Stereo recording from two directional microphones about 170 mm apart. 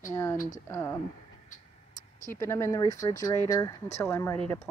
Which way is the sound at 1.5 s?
50° left (ahead or behind).